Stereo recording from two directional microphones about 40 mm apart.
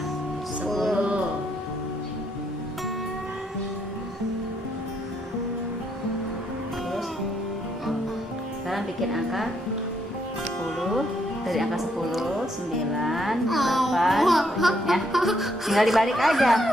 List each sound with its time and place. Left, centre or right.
0.7 s music: centre
0.9 s music: right
8.6 s a woman's voice: centre
10.9 s music: centre
12.9 s speech: centre